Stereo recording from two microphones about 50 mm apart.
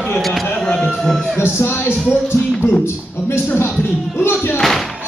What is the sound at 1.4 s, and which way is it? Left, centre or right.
A man's voice, left.